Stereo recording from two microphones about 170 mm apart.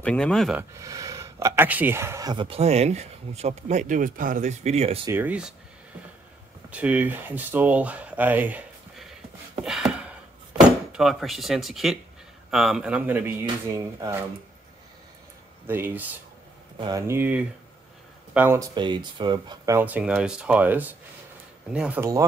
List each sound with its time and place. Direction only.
0.0 s speech: 5° left (ahead or behind)
0.6 s speech: 20° right (ahead or behind); by 5.0 s 40° right (ahead or behind)
5.0 s speech: 10° right (ahead or behind)
6.7 s speech: 10° right (ahead or behind)
9.7 s a sound: 5° right (ahead or behind)
10.9 s speech: centre (ahead or behind); by 14.1 s 20° right (ahead or behind)
15.6 s speech: 10° right (ahead or behind)
18.8 s speech: 25° right (ahead or behind); by 22.0 s 5° right (ahead or behind)